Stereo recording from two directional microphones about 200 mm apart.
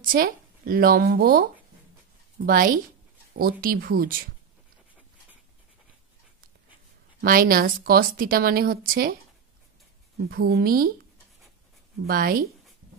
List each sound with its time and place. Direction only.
0.0 s a woman's voice: 45° right (ahead or behind)
7.2 s a woman's voice: 45° right (ahead or behind)
10.3 s a woman's voice: 50° right (ahead or behind)
12.1 s a woman's voice: 45° right (ahead or behind)